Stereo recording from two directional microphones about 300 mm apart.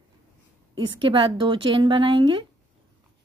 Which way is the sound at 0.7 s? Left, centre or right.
Centre.